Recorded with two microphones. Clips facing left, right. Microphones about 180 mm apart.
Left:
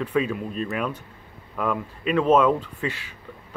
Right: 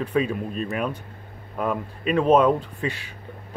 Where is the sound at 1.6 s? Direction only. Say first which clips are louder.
Even; 40° right (ahead or behind).